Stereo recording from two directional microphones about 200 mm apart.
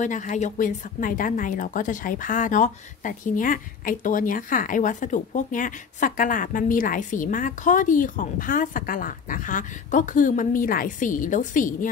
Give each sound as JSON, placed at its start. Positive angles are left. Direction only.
{"t": 0.0, "sound": "speech", "side_deg": 40}